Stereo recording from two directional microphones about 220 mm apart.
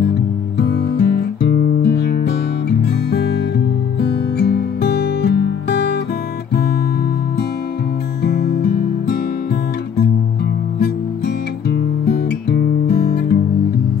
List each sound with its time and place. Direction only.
0.6 s music: 45° left (ahead or behind)
8.2 s music: 45° left (ahead or behind)
10.8 s music: 45° left (ahead or behind)